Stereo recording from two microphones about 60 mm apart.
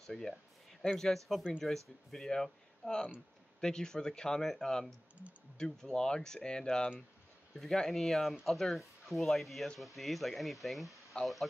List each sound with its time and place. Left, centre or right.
0.0 s speech: centre